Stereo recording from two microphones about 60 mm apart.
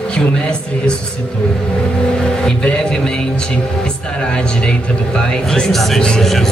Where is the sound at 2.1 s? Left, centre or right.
Centre.